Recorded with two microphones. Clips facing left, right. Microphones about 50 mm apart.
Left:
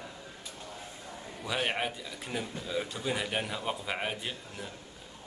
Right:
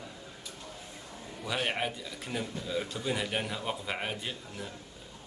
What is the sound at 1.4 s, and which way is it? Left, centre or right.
Speech, centre.